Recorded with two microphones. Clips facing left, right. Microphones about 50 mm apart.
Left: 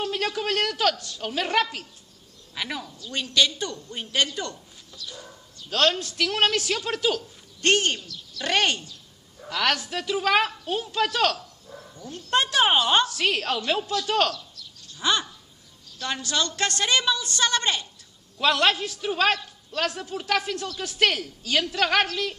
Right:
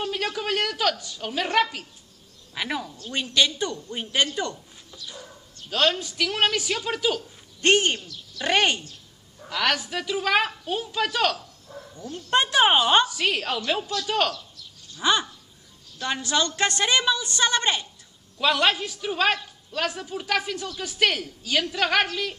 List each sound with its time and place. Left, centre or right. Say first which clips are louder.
0.0 s a sound: left 1 dB; centre
0.4 s a man's voice: left 1 dB; centre
5.7 s a man's voice: even; centre
7.6 s a man's voice: right 2 dB; centre
12.3 s a man's voice: right 2 dB; centre
14.3 s bird: left 1 dB; centre
16.0 s a woman's voice: right 2 dB; centre
18.4 s a man's voice: even; centre